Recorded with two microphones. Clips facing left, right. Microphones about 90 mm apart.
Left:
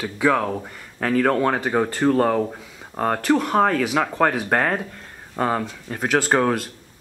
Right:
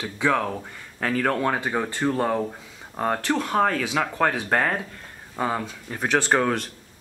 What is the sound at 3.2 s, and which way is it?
Speech, 15° left (ahead or behind).